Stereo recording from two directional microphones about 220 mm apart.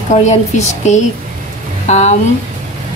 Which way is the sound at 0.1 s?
30° left (ahead or behind).